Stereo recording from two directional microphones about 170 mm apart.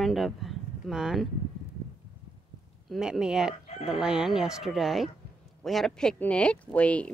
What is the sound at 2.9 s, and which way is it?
Speech, 5° right (ahead or behind).